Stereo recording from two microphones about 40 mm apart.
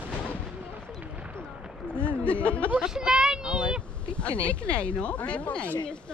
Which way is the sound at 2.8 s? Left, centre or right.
Centre.